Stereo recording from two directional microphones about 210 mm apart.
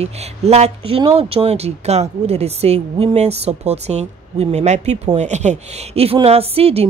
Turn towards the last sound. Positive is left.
turn(degrees=-30)  # may be behind; listen again after turning